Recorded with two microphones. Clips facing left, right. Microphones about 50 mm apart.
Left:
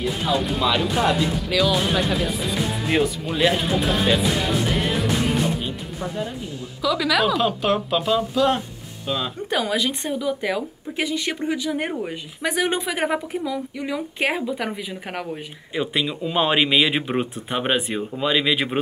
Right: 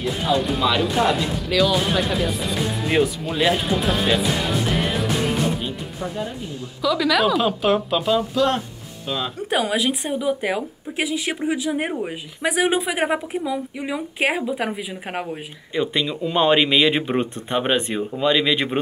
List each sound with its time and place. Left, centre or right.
0.0 s speech: centre
10.1 s speech: right
10.6 s speech: centre
15.7 s speech: centre